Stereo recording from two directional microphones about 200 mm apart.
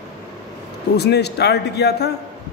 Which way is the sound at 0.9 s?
55° left (ahead or behind).